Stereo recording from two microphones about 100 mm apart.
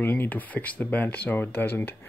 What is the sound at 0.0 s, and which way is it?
Speech, 20° left (ahead or behind).